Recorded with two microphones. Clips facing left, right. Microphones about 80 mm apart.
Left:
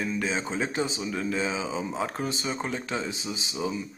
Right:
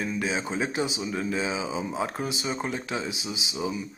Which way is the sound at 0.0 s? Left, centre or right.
Centre.